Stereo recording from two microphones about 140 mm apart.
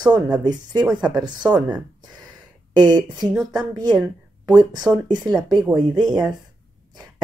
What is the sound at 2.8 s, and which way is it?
Speech, 30° right (ahead or behind).